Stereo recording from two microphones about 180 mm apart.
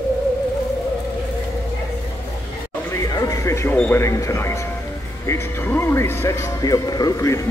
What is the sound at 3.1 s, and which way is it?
Speech, 15° left (ahead or behind).